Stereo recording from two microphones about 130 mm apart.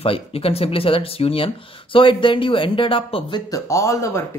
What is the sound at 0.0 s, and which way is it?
Speech, 45° left (ahead or behind).